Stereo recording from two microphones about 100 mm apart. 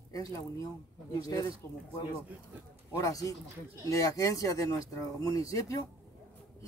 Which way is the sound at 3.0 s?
35° left (ahead or behind).